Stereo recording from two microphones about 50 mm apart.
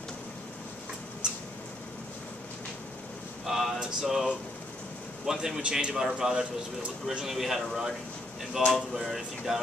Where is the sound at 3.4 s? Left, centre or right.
Centre.